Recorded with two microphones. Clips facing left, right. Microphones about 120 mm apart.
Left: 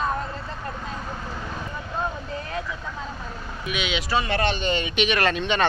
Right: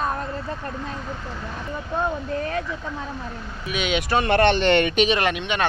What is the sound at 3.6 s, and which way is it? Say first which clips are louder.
Speech: right 4 dB; 45° right (ahead or behind).